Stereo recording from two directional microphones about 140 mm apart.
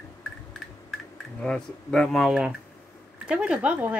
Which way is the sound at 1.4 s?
5° left (ahead or behind).